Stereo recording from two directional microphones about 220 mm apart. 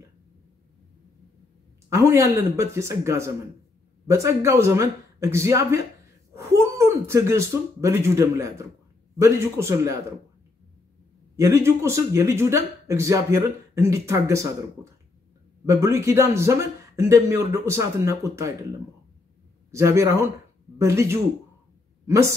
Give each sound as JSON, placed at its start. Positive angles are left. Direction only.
{"t": 1.9, "sound": "speech", "side_deg": -10}
{"t": 11.3, "sound": "speech", "side_deg": -15}
{"t": 15.6, "sound": "speech", "side_deg": -15}
{"t": 19.7, "sound": "speech", "side_deg": -15}